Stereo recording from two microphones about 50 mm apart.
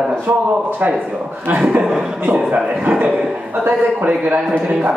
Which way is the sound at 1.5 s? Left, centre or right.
Centre.